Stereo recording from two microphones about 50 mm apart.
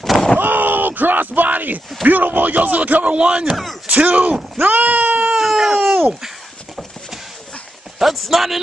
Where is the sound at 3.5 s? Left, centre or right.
Centre.